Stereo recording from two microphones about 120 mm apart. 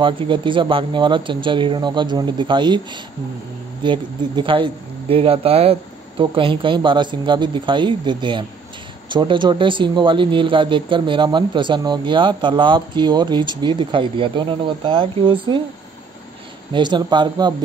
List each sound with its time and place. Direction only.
0.0 s speech: 45° right (ahead or behind)
16.7 s speech: 40° right (ahead or behind)